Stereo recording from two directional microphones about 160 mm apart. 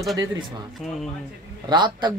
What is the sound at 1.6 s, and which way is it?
Speech, 30° right (ahead or behind).